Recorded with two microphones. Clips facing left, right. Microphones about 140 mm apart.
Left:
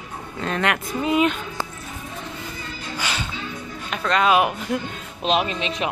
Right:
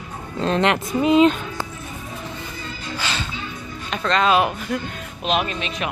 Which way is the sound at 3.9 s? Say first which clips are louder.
Even; 10° left (ahead or behind).